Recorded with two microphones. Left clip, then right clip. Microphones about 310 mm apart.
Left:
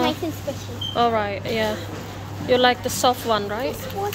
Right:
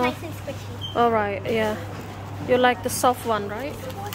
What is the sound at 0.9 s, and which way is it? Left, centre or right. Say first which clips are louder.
Speech: even; centre.